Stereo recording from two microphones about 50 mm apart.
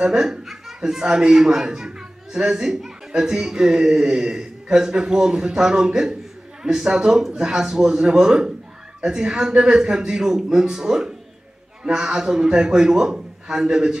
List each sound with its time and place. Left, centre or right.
0.0 s a man's voice: centre